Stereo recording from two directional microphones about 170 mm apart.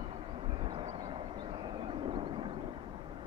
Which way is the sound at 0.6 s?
30° right (ahead or behind).